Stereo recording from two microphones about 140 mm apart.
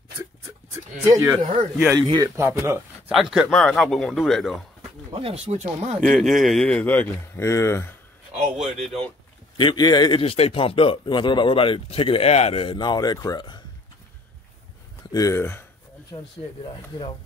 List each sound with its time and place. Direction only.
1.0 s a man's voice: 25° right (ahead or behind)
3.2 s speech: centre (ahead or behind)
5.1 s speech: 45° right (ahead or behind)
5.9 s speech: centre (ahead or behind); by 7.9 s 20° left (ahead or behind)
8.5 s speech: centre (ahead or behind)
9.6 s speech: 35° left (ahead or behind)
10.2 s speech: 45° left (ahead or behind)
12.7 s speech: 30° left (ahead or behind)
15.1 s speech: 20° left (ahead or behind)